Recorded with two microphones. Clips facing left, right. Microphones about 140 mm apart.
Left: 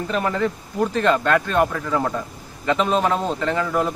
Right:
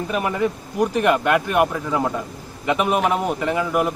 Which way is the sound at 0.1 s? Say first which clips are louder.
Even; 15° right (ahead or behind).